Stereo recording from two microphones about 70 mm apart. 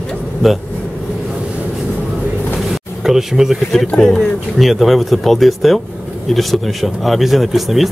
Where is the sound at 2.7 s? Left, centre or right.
Centre.